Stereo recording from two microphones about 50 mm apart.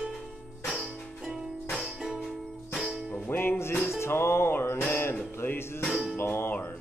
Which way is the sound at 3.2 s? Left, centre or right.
Left.